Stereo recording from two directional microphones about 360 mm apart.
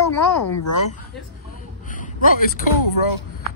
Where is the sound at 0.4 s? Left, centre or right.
Left.